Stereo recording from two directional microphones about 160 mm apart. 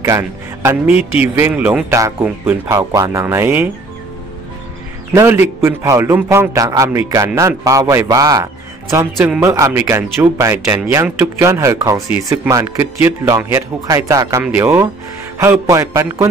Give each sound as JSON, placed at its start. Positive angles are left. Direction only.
{"t": 0.7, "sound": "speech", "side_deg": -10}
{"t": 5.1, "sound": "a man's voice", "side_deg": -15}